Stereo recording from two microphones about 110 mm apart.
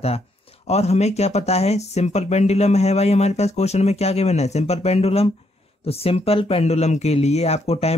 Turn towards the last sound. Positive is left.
turn(degrees=70)  # may be behind; listen again after turning